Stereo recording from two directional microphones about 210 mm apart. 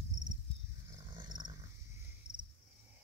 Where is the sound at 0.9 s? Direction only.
20° right (ahead or behind).